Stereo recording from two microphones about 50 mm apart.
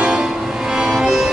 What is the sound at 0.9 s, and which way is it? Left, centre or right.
Music, centre.